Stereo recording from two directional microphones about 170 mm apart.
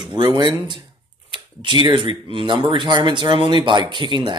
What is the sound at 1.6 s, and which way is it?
Speech, 25° right (ahead or behind).